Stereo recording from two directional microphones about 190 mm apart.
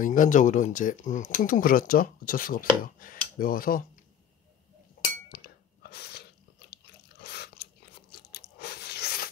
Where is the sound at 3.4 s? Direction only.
50° left (ahead or behind).